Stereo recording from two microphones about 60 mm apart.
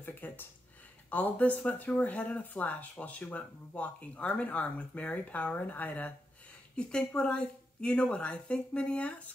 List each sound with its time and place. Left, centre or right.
0.0 s a sound: left
1.1 s speech: left
6.8 s a woman's voice: centre